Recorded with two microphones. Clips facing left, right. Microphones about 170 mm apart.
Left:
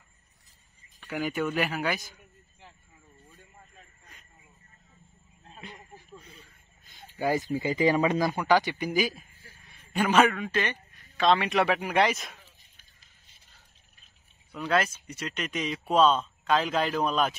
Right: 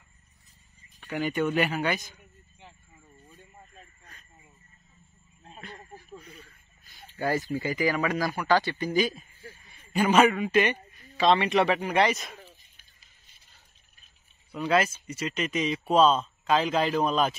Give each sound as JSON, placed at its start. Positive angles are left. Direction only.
{"t": 1.1, "sound": "speech", "side_deg": 0}
{"t": 5.6, "sound": "a sound", "side_deg": 15}
{"t": 6.8, "sound": "speech", "side_deg": 20}
{"t": 8.9, "sound": "a man's voice", "side_deg": 0}
{"t": 11.1, "sound": "speech", "side_deg": 0}
{"t": 14.5, "sound": "speech", "side_deg": 0}